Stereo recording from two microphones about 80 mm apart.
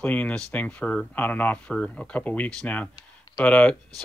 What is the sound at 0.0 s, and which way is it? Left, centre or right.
Speech, centre.